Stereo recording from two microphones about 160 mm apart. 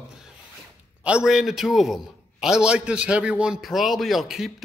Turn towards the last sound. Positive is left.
turn(degrees=0)  # may be behind; listen again after turning